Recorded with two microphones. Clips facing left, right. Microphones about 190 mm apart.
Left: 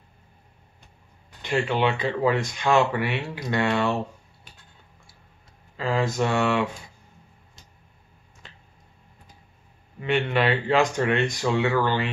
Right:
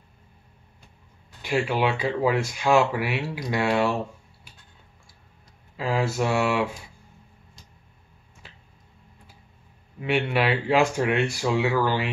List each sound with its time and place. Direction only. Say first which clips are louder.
1.4 s speech: even; 10° right (ahead or behind)
5.8 s speech: left 1 dB; 5° right (ahead or behind)
8.4 s finger snapping: even; 5° right (ahead or behind)
9.9 s speech: even; 5° right (ahead or behind)